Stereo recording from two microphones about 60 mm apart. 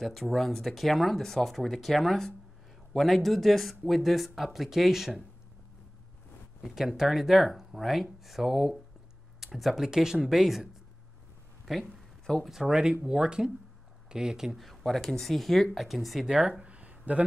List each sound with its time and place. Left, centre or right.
0.0 s speech: centre
6.6 s speech: centre
11.9 s a sound: centre
12.4 s speech: centre
14.6 s speech: centre
16.3 s a sound: centre